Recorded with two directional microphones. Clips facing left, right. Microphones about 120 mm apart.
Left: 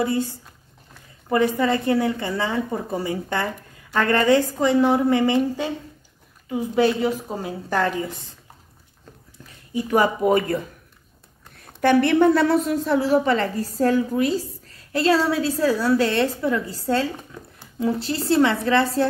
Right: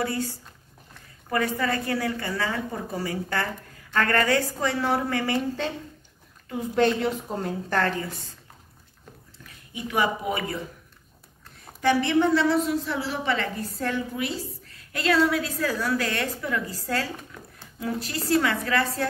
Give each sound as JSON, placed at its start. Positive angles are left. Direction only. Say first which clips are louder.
{"t": 0.0, "sound": "a woman's voice", "louder": "left 5 dB", "side_deg": 20}
{"t": 6.5, "sound": "a woman's voice", "louder": "left 3 dB", "side_deg": 5}
{"t": 9.8, "sound": "speech", "louder": "left 6 dB", "side_deg": 40}
{"t": 11.8, "sound": "a woman's voice", "louder": "left 5 dB", "side_deg": 55}